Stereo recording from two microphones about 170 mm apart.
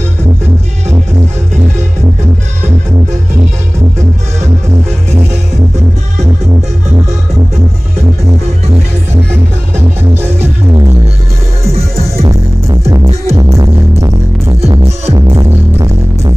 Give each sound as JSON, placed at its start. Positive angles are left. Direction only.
{"t": 9.8, "sound": "music", "side_deg": -15}
{"t": 12.2, "sound": "music", "side_deg": -15}
{"t": 13.0, "sound": "music", "side_deg": -40}
{"t": 13.6, "sound": "music", "side_deg": -20}
{"t": 15.3, "sound": "music", "side_deg": -20}